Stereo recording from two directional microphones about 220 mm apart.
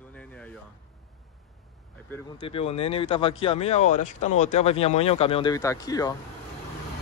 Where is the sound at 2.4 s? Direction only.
25° left (ahead or behind).